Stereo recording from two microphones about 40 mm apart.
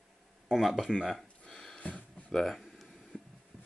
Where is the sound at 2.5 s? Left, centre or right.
Centre.